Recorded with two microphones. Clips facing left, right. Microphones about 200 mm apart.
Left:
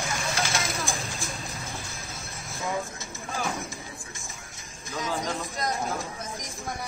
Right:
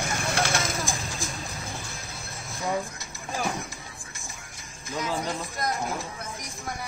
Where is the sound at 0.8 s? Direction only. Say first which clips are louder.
Right 1 dB; 15° right (ahead or behind).